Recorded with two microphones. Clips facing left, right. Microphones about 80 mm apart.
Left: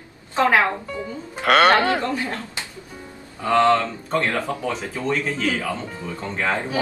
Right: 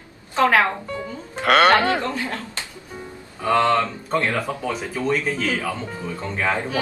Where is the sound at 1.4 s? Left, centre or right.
Centre.